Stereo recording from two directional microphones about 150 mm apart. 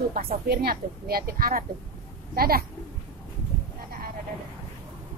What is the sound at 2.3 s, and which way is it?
Speech, 90° right.